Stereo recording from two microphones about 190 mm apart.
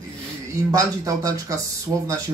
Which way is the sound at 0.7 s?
15° right (ahead or behind).